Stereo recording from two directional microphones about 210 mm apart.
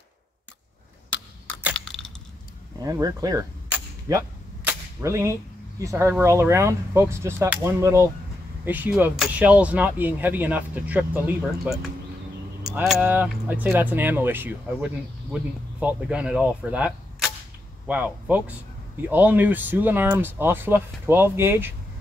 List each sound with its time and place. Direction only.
1.6 s a sound: centre (ahead or behind)
2.8 s cap gun: 15° right (ahead or behind)
4.6 s speech: 15° right (ahead or behind)